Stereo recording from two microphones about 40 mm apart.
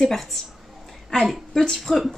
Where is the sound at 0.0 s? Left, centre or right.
Centre.